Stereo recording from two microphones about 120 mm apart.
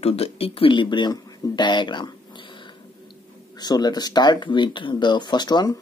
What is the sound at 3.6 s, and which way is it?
Speech, 35° left (ahead or behind).